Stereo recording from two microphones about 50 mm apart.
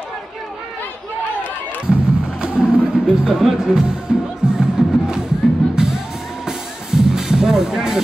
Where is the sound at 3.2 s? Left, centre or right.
Centre.